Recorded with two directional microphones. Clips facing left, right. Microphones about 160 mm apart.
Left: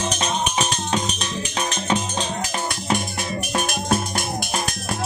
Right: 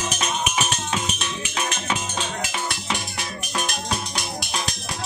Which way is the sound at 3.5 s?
50° left (ahead or behind).